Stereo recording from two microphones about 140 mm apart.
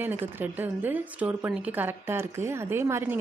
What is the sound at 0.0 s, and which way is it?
A woman's voice, 15° right (ahead or behind).